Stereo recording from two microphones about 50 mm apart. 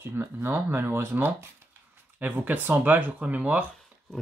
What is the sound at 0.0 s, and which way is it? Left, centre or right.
Speech, right.